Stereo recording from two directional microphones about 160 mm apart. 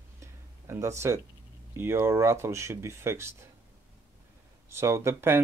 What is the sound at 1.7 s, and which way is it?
Speech, 15° right (ahead or behind).